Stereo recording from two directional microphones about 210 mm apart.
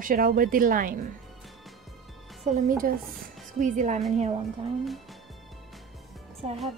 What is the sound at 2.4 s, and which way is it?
A woman's voice, 35° right (ahead or behind).